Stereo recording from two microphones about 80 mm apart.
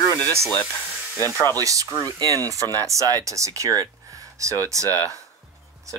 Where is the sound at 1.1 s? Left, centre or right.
Left.